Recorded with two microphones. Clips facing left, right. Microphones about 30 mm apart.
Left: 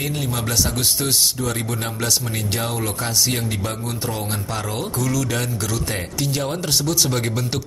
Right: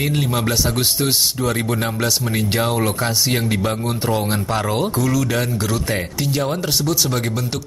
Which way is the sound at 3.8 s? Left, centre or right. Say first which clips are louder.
Right 6 dB; right.